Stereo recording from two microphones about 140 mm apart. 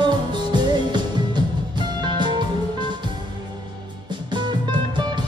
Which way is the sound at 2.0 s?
35° right (ahead or behind).